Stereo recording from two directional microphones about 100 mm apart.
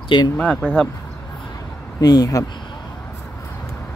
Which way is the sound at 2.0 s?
40° left (ahead or behind).